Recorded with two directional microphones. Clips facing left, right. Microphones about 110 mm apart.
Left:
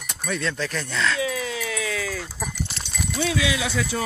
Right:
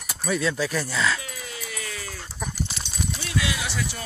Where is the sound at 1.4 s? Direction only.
90° left.